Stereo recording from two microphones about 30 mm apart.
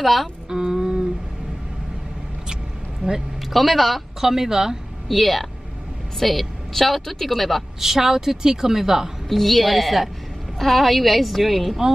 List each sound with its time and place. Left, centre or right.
0.0 s speech: centre
0.5 s a sound: right
3.3 s a woman's voice: centre
4.2 s a woman's voice: centre
5.0 s a woman's voice: centre
7.8 s a woman's voice: centre
9.3 s a woman's voice: centre